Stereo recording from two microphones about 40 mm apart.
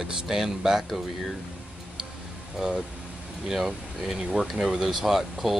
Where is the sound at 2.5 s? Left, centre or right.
Centre.